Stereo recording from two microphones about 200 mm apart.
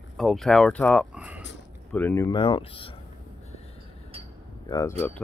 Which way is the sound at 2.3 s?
25° left (ahead or behind).